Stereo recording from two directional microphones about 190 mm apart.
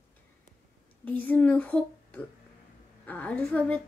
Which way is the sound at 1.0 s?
10° left (ahead or behind).